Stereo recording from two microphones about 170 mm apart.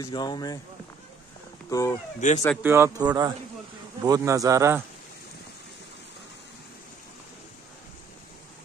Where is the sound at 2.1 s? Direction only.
45° left (ahead or behind).